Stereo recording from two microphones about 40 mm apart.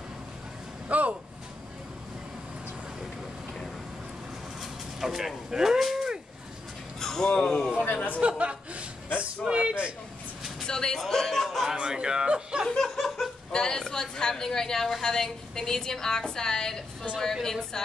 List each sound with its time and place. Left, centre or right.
0.8 s a sound: right
4.6 s bow-wow: centre
5.5 s cattle: centre
7.0 s a sound: centre
7.3 s speech: left
7.7 s a man's voice: left
8.2 s speech: right
10.7 s a woman's voice: centre
11.7 s speech: right
12.6 s laughter: centre
13.5 s a woman's voice: centre